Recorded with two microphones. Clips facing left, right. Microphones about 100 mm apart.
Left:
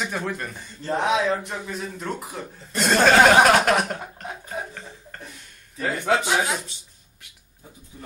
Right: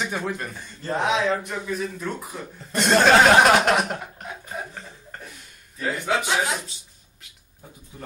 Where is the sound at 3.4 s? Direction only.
Centre (ahead or behind).